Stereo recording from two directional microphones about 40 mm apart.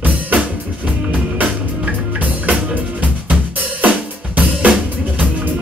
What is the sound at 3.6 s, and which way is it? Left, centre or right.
Drum kit, right.